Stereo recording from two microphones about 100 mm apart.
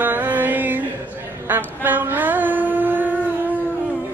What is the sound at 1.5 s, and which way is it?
Mantra, 20° right (ahead or behind).